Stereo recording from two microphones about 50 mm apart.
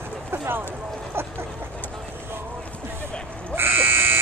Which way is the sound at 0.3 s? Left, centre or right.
Right.